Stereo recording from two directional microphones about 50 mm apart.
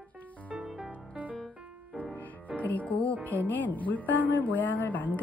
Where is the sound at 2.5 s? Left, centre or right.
Left.